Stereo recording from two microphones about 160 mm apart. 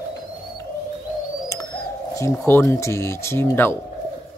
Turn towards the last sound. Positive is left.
turn(degrees=15)  # may be behind; listen again after turning